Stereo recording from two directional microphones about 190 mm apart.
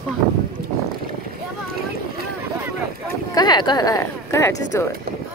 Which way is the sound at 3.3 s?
20° left (ahead or behind).